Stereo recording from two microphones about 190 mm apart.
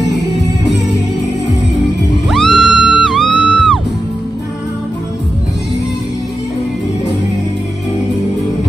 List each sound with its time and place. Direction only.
2.2 s music: centre (ahead or behind)